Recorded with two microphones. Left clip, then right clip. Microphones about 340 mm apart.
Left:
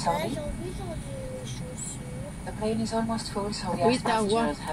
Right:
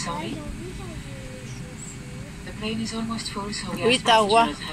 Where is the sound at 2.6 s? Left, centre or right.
Left.